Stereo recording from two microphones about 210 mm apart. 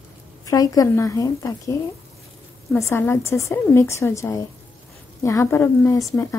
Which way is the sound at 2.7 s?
10° left (ahead or behind).